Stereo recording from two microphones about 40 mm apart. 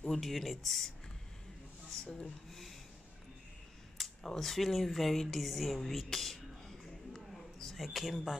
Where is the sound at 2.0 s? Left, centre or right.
Centre.